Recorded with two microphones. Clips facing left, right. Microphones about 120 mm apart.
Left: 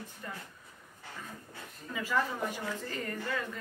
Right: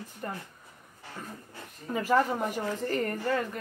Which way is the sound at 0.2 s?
45° right (ahead or behind).